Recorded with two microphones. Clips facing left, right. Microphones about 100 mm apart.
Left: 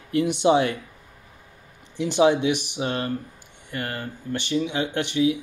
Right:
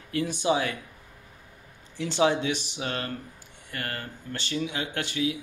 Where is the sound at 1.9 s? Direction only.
15° left (ahead or behind).